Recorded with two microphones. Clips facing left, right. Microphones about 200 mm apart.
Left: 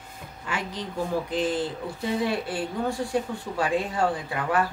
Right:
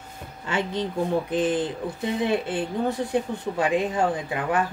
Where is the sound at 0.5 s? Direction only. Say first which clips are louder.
Right 6 dB; 25° right (ahead or behind).